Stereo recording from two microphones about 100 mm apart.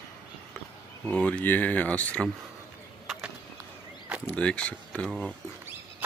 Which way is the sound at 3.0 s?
5° right (ahead or behind).